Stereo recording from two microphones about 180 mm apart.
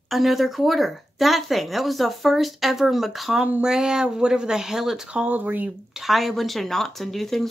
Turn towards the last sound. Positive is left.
turn(degrees=0)  # may be behind; listen again after turning